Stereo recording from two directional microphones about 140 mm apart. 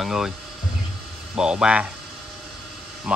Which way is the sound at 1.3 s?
5° right (ahead or behind).